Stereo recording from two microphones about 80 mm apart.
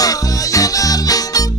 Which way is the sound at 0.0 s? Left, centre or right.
Left.